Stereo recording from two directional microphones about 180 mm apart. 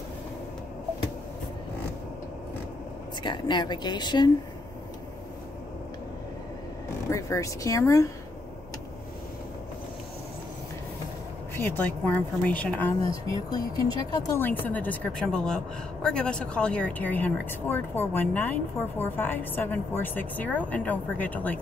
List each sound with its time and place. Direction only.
3.2 s a woman's voice: 25° left (ahead or behind)
7.1 s speech: 15° left (ahead or behind)
11.5 s speech: 10° left (ahead or behind)
13.1 s speech: 20° left (ahead or behind)